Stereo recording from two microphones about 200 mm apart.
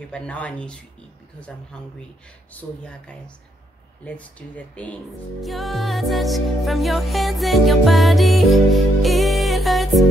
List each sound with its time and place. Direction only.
0.1 s speech: 5° left (ahead or behind)
5.4 s music: centre (ahead or behind)